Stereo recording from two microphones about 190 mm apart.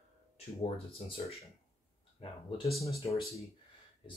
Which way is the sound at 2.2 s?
30° left (ahead or behind).